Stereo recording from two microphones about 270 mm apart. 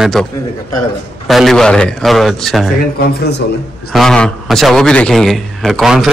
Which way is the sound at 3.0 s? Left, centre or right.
Left.